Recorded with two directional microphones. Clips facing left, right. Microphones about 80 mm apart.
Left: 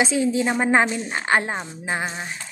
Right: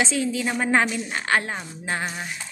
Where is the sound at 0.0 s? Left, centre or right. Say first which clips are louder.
Left 4 dB; left.